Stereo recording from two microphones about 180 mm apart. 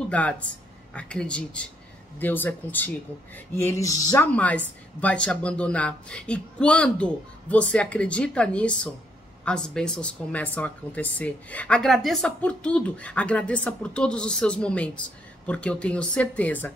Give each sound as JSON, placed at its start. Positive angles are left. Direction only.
{"t": 0.1, "sound": "speech", "side_deg": 5}